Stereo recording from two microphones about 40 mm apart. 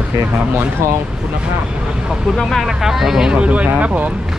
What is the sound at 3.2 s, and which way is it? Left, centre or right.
Speech, right.